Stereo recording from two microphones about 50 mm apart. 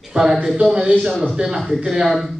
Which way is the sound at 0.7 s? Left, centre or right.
Centre.